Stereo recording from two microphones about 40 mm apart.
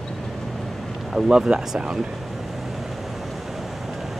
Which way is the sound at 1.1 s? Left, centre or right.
Centre.